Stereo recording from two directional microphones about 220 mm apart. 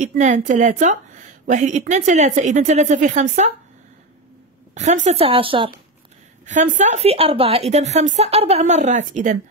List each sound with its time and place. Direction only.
0.0 s a woman's voice: 35° right (ahead or behind)
4.7 s speech: 35° right (ahead or behind)
6.4 s a woman's voice: 35° right (ahead or behind)